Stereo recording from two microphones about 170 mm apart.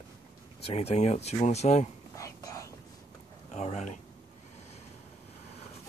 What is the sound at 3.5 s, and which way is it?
Speech, 40° left (ahead or behind).